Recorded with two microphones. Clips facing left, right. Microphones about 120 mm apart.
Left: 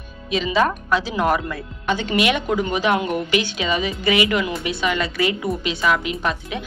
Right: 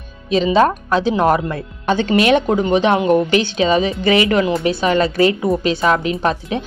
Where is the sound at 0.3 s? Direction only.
35° right (ahead or behind).